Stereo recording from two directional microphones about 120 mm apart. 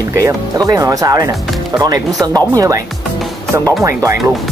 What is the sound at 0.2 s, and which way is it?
Speech, 30° right (ahead or behind).